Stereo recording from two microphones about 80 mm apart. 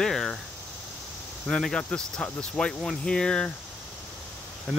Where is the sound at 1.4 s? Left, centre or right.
Centre.